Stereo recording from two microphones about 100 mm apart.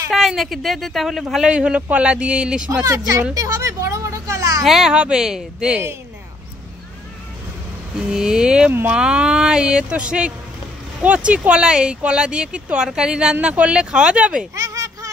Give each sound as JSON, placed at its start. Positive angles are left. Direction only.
{"t": 0.1, "sound": "speech", "side_deg": 0}
{"t": 2.8, "sound": "speech", "side_deg": -30}
{"t": 3.3, "sound": "a sound", "side_deg": -35}
{"t": 4.6, "sound": "speech", "side_deg": -5}
{"t": 8.1, "sound": "speech", "side_deg": -5}
{"t": 14.5, "sound": "a sound", "side_deg": -35}